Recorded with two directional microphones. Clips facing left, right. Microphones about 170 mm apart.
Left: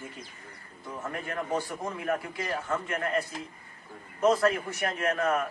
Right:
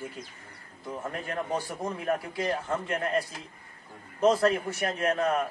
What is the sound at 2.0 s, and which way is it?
A man's voice, 30° right (ahead or behind).